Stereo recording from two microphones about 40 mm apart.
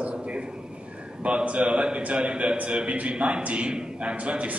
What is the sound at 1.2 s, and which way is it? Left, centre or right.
A man's voice, right.